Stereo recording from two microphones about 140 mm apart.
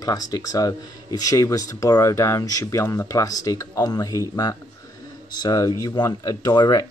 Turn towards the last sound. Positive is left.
turn(degrees=30)  # may be behind; listen again after turning